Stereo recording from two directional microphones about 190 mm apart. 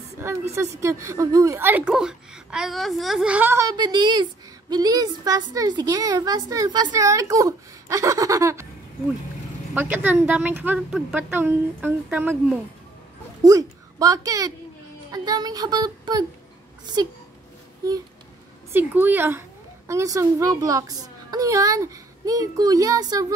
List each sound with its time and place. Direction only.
0.2 s a woman's voice: 15° right (ahead or behind)
9.8 s a woman's voice: 10° right (ahead or behind)
13.4 s speech: 20° right (ahead or behind)
18.7 s a woman's voice: 10° right (ahead or behind)